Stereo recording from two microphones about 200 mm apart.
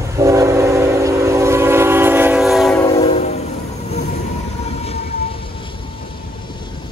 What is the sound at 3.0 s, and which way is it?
Train, 30° left (ahead or behind).